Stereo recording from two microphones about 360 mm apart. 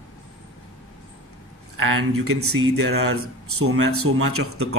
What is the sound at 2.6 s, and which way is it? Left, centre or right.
Speech, right.